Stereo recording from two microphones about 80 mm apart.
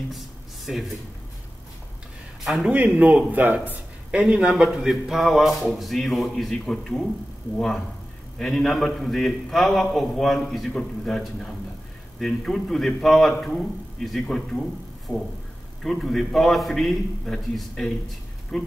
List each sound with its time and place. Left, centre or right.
0.7 s a man's voice: centre
2.4 s a man's voice: centre
2.7 s a man's voice: centre
15.1 s a sound: centre
15.8 s a man's voice: centre